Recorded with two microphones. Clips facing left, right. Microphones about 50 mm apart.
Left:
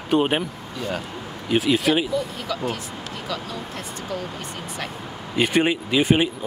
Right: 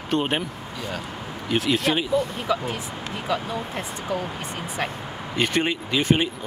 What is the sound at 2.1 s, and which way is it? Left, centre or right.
Speech, right.